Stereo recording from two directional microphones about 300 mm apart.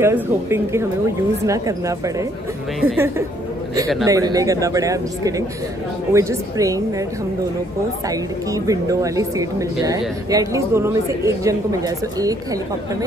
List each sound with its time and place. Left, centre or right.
0.0 s a woman's voice: centre
8.6 s a woman's voice: centre